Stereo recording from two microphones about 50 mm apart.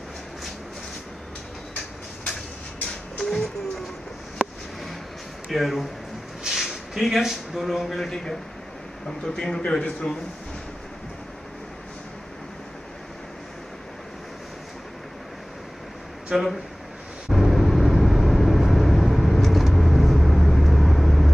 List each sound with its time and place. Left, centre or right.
2.9 s a sound: centre
5.5 s a man's voice: centre
16.3 s speech: right
17.3 s vehicle: centre